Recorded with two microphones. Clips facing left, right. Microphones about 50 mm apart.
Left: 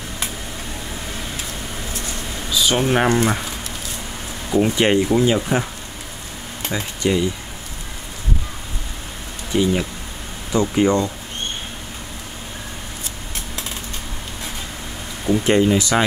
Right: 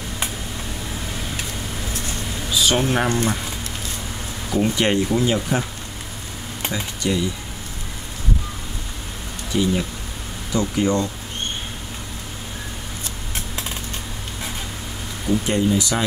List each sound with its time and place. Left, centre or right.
2.5 s a sound: centre
2.8 s speech: left
4.5 s speech: centre
6.7 s speech: left
9.5 s speech: left
15.4 s speech: left